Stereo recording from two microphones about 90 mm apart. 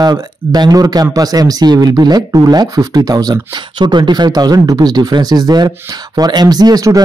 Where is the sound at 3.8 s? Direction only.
55° right (ahead or behind).